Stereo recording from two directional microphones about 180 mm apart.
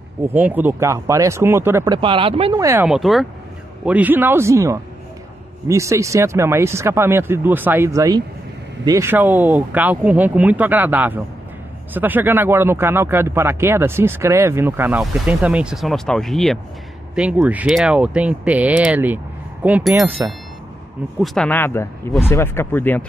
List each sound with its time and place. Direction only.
0.3 s speech: 10° right (ahead or behind)
2.0 s speech: 30° right (ahead or behind)
2.5 s speech: 15° right (ahead or behind)
2.9 s speech: centre (ahead or behind)
21.2 s speech: centre (ahead or behind)
21.5 s speech: 10° left (ahead or behind)